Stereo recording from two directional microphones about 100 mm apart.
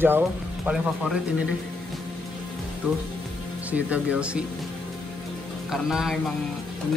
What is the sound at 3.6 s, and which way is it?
Speech, 15° right (ahead or behind).